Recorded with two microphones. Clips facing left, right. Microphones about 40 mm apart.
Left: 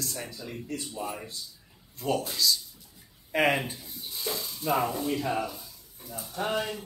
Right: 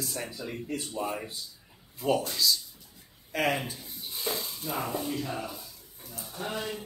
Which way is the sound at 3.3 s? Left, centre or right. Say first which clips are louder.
Left 3 dB; left.